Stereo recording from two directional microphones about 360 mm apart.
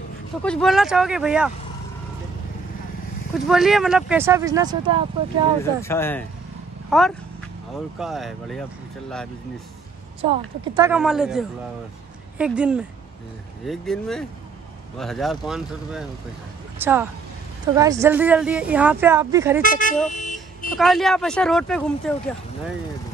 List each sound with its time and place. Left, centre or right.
0.4 s speech: centre
3.3 s speech: centre
5.6 s speech: centre
10.2 s speech: centre
19.6 s speech: left
20.1 s car alarm: centre
20.7 s speech: centre